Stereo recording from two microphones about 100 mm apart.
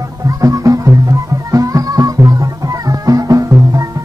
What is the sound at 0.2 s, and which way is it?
Music, 35° right (ahead or behind).